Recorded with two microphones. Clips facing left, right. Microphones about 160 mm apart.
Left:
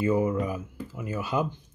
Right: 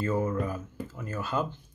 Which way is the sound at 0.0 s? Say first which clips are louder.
Left 4 dB; 15° left (ahead or behind).